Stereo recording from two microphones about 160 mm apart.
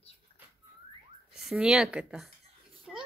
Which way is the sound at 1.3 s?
5° right (ahead or behind).